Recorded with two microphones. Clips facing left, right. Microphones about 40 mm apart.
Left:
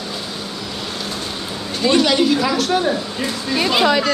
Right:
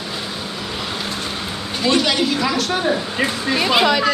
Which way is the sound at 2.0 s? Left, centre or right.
Centre.